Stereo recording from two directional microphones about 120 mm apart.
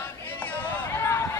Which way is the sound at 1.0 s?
25° left (ahead or behind).